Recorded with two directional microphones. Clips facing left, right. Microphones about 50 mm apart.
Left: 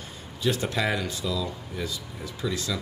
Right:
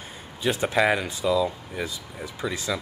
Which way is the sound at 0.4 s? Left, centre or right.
Right.